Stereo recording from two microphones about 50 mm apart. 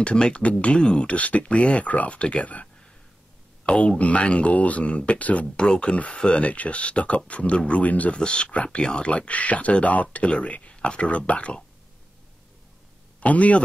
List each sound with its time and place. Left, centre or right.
0.0 s speech: left
8.2 s speech: centre
13.2 s speech: left